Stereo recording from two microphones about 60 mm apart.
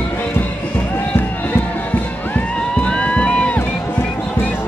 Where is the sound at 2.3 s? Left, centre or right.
Centre.